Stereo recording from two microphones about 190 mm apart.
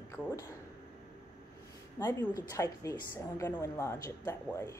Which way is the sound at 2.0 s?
15° left (ahead or behind).